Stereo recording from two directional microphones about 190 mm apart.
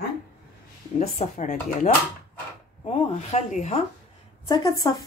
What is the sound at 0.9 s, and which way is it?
Speech, 35° left (ahead or behind).